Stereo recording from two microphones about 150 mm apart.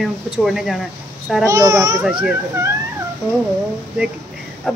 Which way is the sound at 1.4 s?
20° right (ahead or behind).